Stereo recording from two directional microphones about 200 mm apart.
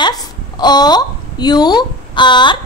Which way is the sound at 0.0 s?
20° left (ahead or behind).